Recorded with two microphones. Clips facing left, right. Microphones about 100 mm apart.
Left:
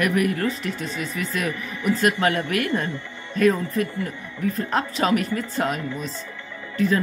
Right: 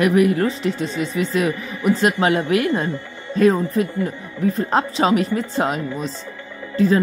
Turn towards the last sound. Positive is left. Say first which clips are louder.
# right 5 dB
turn(degrees=-30)  # may be behind; listen again after turning